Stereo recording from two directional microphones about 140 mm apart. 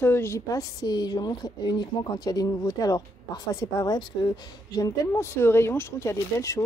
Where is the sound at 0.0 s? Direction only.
15° left (ahead or behind).